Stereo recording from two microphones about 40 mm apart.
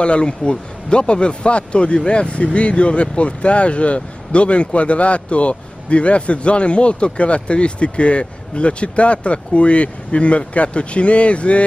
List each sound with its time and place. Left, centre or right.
0.0 s speech: left